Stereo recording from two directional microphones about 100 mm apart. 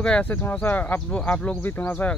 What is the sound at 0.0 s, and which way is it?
Speech, 15° left (ahead or behind).